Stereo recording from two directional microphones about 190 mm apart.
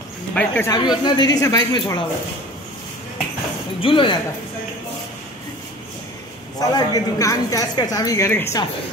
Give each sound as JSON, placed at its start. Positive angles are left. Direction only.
{"t": 0.3, "sound": "speech", "side_deg": 5}
{"t": 0.7, "sound": "a woman's voice", "side_deg": 20}
{"t": 3.8, "sound": "a woman's voice", "side_deg": 25}
{"t": 6.7, "sound": "a woman's voice", "side_deg": 20}